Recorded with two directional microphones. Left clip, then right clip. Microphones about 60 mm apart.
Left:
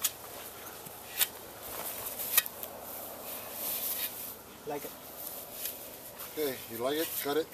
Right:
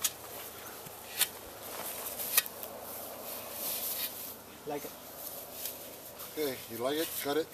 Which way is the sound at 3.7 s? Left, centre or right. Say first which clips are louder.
Even; left.